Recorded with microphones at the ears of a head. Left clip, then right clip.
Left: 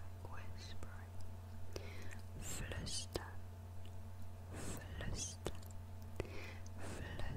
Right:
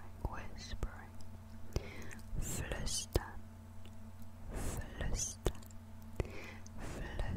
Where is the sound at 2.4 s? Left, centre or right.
Right.